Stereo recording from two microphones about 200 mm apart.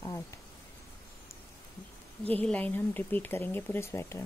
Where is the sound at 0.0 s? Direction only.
15° left (ahead or behind).